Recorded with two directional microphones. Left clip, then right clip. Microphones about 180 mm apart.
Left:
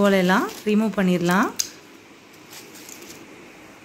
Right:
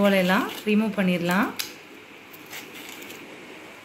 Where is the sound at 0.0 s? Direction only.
40° left (ahead or behind).